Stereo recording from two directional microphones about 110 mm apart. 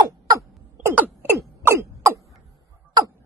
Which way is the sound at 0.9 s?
15° right (ahead or behind).